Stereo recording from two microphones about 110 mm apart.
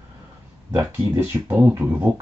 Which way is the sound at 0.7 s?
20° right (ahead or behind).